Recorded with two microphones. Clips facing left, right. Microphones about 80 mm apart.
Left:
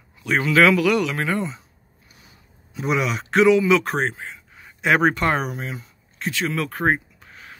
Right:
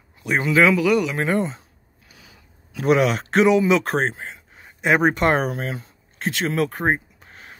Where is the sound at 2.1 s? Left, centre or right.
Right.